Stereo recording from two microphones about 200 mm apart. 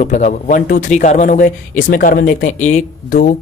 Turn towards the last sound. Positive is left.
turn(degrees=35)  # may be behind; listen again after turning